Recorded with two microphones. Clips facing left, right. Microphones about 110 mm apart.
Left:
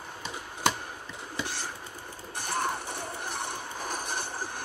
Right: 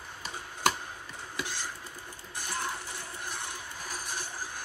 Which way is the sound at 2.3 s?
55° left (ahead or behind).